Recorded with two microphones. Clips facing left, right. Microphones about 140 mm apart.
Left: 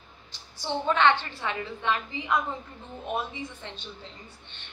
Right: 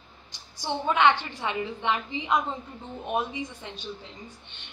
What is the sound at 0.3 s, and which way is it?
A woman's voice, 15° right (ahead or behind).